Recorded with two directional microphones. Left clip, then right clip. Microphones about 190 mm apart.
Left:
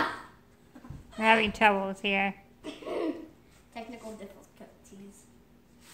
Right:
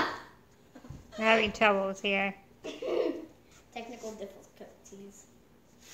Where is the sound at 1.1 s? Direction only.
20° left (ahead or behind).